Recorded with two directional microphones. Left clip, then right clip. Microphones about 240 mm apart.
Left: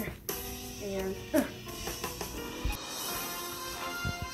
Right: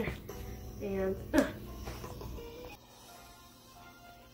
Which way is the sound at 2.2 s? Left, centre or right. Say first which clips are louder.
Left 7 dB; left.